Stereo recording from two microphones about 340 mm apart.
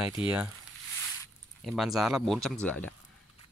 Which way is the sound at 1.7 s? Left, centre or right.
Centre.